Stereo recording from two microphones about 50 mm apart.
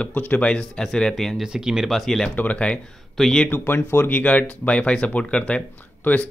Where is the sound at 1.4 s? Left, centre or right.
Centre.